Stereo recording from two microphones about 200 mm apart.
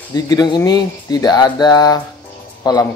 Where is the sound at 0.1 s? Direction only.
20° left (ahead or behind).